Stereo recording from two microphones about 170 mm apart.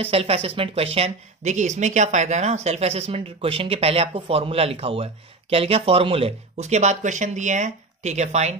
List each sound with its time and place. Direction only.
0.0 s a woman's voice: 35° right (ahead or behind)